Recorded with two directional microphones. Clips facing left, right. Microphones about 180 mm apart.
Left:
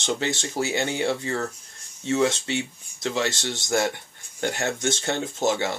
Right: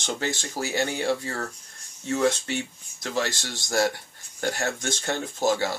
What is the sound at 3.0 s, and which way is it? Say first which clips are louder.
Speech: left 2 dB; 20° left (ahead or behind).